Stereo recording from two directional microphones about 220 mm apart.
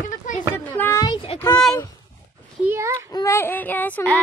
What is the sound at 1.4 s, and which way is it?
Speech, 5° left (ahead or behind).